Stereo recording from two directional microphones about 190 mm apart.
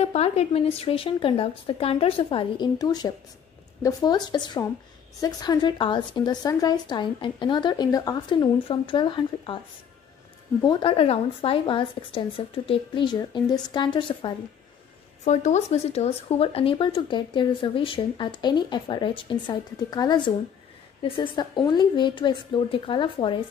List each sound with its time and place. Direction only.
0.0 s speech: 35° left (ahead or behind)
10.7 s speech: 30° left (ahead or behind)
15.2 s speech: 40° left (ahead or behind)